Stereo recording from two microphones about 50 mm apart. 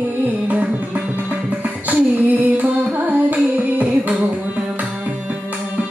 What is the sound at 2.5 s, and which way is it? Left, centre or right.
Music, right.